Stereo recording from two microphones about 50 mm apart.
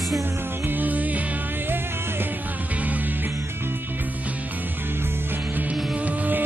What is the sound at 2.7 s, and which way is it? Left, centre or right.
Music, right.